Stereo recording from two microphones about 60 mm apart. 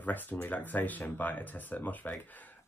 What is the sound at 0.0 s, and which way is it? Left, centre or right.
Speech, left.